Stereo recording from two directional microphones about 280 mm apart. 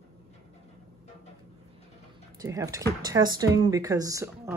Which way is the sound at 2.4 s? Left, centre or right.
Centre.